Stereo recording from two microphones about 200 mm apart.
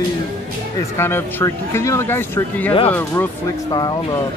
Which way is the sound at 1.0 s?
10° left (ahead or behind).